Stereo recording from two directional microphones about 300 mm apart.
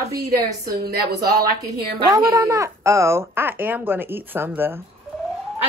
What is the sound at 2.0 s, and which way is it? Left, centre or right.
A woman's voice, centre.